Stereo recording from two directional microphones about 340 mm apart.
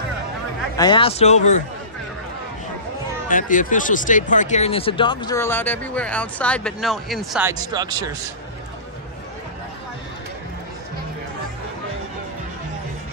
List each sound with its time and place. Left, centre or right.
0.7 s speech: centre
3.3 s speech: left; by 8.2 s centre